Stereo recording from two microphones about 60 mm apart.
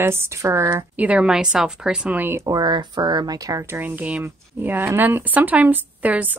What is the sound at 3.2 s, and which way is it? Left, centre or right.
Speech, right.